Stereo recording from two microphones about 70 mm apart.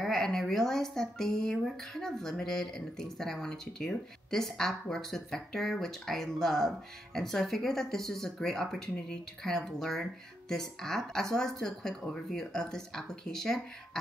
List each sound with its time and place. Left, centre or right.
0.0 s speech: centre